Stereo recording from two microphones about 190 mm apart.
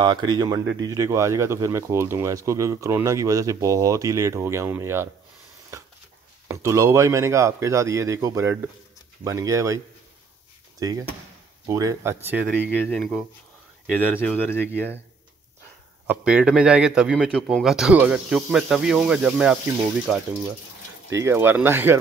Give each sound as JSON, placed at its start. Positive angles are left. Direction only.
{"t": 0.0, "sound": "speech", "side_deg": -25}
{"t": 6.4, "sound": "speech", "side_deg": -15}
{"t": 10.8, "sound": "speech", "side_deg": -20}
{"t": 12.7, "sound": "a man's voice", "side_deg": 5}
{"t": 14.2, "sound": "speech", "side_deg": 10}
{"t": 16.1, "sound": "a man's voice", "side_deg": -5}